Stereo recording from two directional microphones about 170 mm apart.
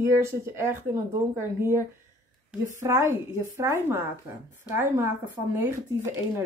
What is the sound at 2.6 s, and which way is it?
A woman's voice, 15° right (ahead or behind).